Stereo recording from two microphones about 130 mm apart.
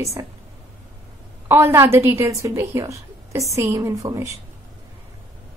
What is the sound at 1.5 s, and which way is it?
A woman's voice, 20° right (ahead or behind).